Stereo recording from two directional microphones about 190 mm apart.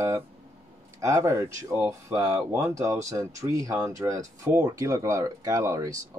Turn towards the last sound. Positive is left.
turn(degrees=-15)  # may be behind; listen again after turning